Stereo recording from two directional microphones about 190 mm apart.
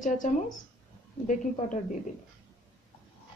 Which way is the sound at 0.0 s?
45° left (ahead or behind).